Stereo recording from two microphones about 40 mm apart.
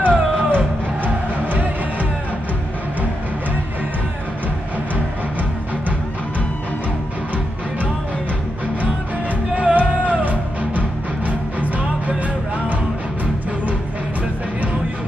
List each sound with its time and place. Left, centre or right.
0.0 s music: right
9.6 s music: right